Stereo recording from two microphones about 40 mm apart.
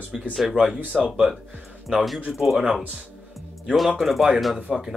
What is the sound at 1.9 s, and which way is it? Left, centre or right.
Speech, centre.